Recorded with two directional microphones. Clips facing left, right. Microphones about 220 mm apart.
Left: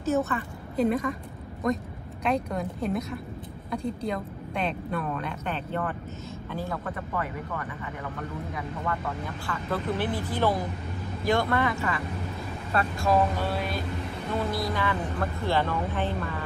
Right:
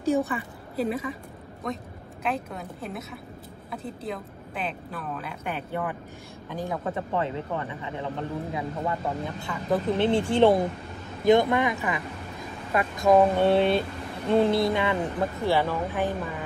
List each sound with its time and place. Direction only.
0.0 s a woman's voice: 15° right (ahead or behind)